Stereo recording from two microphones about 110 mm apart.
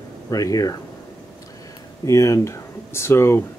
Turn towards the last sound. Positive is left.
turn(degrees=25)  # may be behind; listen again after turning